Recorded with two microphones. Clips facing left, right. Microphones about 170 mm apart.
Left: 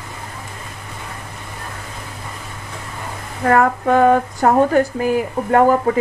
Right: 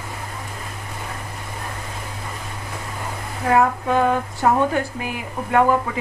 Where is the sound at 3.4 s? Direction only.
55° left (ahead or behind).